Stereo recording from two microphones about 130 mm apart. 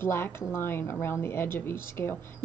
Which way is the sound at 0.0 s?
20° left (ahead or behind).